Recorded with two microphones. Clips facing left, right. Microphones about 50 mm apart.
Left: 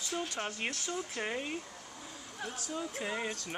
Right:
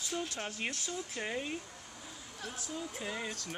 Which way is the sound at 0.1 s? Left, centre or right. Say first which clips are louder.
Left 1 dB; centre.